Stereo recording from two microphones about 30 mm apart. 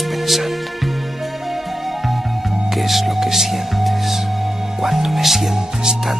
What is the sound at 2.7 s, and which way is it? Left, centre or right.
Music, centre.